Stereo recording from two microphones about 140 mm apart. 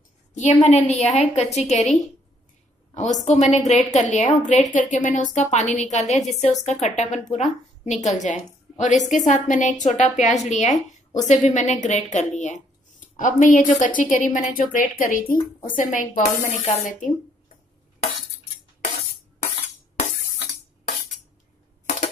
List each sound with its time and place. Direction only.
0.3 s a woman's voice: 60° left (ahead or behind); by 15.3 s 85° left
15.6 s speech: 75° left (ahead or behind)